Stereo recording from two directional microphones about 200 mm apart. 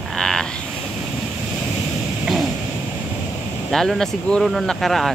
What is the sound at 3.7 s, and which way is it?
Speech, centre (ahead or behind).